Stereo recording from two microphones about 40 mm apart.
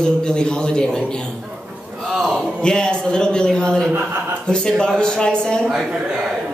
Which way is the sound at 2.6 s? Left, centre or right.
Left.